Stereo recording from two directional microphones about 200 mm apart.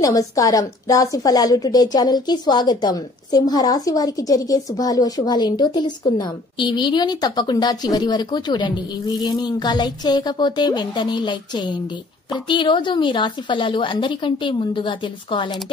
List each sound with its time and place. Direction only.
0.0 s a woman's voice: 15° left (ahead or behind)